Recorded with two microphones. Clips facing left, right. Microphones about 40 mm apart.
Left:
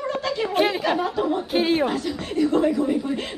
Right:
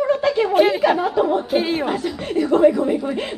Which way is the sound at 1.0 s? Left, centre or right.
Centre.